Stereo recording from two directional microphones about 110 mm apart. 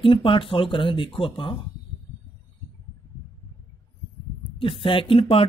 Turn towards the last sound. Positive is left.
turn(degrees=60)  # may be behind; listen again after turning